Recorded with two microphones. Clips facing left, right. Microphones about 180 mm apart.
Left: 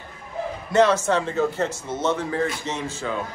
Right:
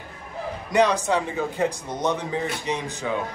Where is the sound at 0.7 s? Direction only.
15° right (ahead or behind).